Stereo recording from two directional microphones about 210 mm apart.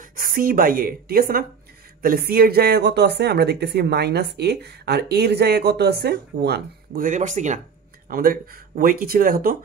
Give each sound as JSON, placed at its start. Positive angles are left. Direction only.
{"t": 0.1, "sound": "speech", "side_deg": -40}